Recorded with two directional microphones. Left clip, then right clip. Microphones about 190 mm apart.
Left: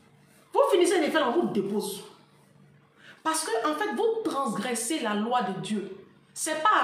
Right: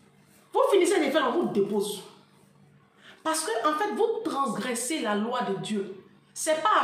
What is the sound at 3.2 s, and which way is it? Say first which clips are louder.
Speech: right 1 dB; centre (ahead or behind).